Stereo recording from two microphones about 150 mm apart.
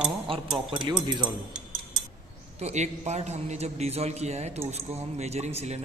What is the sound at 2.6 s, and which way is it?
A man's voice, 50° right (ahead or behind).